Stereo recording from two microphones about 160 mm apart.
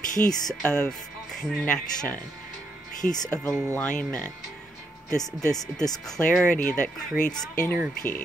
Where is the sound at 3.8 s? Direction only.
10° left (ahead or behind).